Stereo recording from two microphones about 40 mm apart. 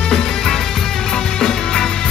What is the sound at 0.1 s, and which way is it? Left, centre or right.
Music, centre.